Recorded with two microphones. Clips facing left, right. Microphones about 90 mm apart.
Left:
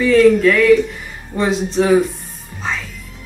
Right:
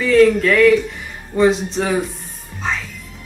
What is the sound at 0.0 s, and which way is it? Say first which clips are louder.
Speech: left 2 dB; centre (ahead or behind).